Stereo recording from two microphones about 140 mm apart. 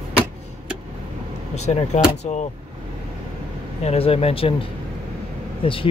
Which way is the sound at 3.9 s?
45° left (ahead or behind).